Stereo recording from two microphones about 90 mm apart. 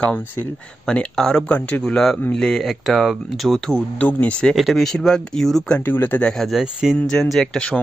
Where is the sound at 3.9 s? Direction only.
20° left (ahead or behind).